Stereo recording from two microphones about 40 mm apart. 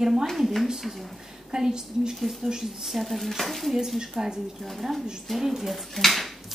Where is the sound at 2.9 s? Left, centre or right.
Centre.